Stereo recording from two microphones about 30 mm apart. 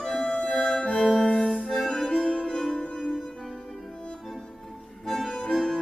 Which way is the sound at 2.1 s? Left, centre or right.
Left.